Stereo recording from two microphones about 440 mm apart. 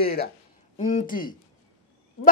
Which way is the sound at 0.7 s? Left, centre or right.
Centre.